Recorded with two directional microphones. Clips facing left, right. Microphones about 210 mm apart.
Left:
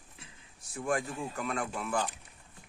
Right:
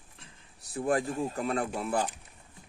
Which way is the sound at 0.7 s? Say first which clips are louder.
Right 4 dB; 35° right (ahead or behind).